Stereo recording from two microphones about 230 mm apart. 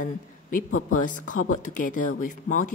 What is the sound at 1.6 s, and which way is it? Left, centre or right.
Speech, left.